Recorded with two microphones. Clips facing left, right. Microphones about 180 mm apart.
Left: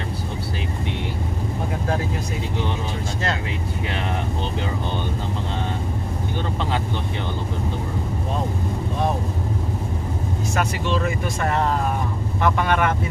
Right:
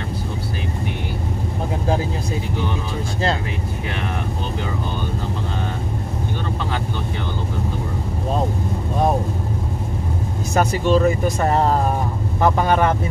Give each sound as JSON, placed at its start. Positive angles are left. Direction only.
{"t": 10.5, "sound": "speech", "side_deg": -35}